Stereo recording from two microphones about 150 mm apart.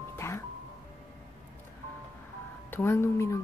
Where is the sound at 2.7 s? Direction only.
15° left (ahead or behind).